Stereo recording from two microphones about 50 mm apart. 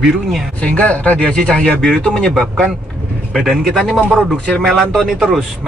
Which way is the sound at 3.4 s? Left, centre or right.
Centre.